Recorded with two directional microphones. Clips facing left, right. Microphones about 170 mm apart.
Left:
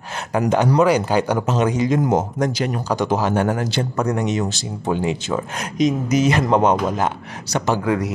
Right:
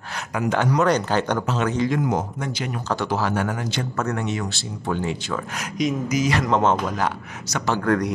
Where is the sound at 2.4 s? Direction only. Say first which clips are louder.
Left 7 dB; 40° left (ahead or behind).